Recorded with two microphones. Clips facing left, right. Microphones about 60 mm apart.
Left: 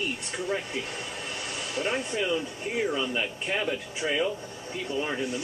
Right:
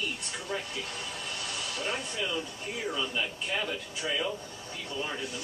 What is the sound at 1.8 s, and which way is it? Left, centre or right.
Speech, left.